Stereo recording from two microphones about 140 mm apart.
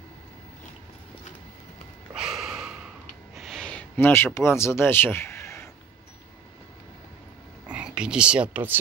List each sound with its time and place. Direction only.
2.1 s snort: 5° right (ahead or behind)
3.3 s a sound: centre (ahead or behind); by 5.7 s 20° left (ahead or behind)
7.7 s speech: 5° right (ahead or behind)